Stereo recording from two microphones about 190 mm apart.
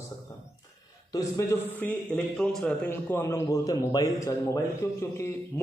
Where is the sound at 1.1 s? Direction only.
15° left (ahead or behind).